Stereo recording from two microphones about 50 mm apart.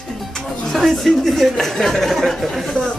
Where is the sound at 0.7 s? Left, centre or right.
Centre.